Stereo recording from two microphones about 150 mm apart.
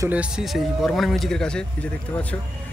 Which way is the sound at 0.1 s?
5° right (ahead or behind).